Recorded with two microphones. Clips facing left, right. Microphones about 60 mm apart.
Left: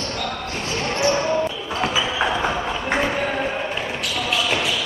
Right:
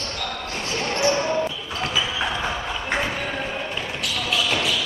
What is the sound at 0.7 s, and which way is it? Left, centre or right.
Basketball bounce, centre.